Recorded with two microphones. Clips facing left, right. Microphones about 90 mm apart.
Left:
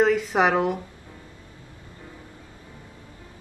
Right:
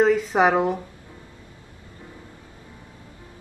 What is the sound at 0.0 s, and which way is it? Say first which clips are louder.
Speech: right 2 dB; 5° left (ahead or behind).